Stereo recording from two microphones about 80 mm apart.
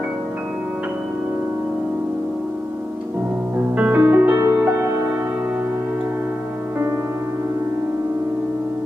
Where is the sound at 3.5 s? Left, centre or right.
Right.